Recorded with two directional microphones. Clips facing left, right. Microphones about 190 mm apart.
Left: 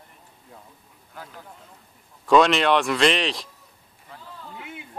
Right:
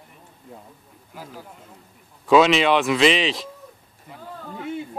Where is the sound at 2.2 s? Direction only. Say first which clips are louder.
Right 2 dB; centre (ahead or behind).